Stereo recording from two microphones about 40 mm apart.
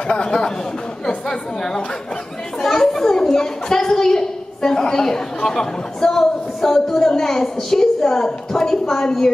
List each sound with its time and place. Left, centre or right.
0.1 s a child's voice: centre